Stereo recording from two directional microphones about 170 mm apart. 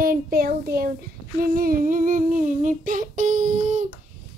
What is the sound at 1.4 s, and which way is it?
Humming, 55° right (ahead or behind).